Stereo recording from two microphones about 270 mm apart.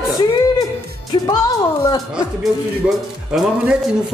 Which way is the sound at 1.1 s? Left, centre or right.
Centre.